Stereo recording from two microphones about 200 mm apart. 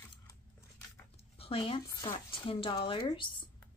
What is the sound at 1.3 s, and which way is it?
Speech, 30° left (ahead or behind).